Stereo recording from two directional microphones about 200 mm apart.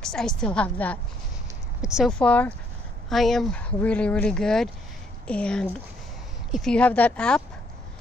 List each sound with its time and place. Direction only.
0.0 s speech: 5° left (ahead or behind)